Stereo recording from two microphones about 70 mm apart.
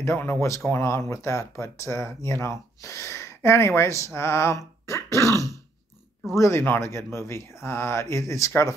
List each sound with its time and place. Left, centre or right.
0.0 s speech: left
5.2 s throat clearing: right
6.3 s speech: left